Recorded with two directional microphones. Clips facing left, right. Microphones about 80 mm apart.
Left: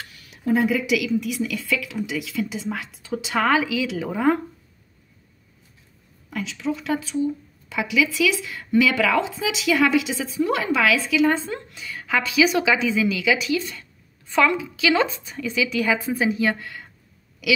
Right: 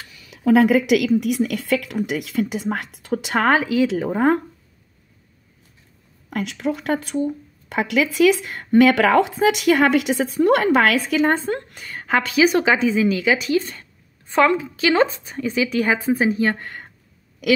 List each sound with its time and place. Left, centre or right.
0.4 s speech: right
6.3 s a woman's voice: right